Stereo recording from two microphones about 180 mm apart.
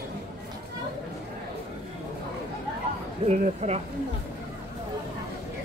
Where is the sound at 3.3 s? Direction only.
35° right (ahead or behind).